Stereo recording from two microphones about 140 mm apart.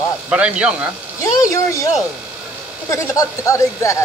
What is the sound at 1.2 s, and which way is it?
Speech, 25° left (ahead or behind).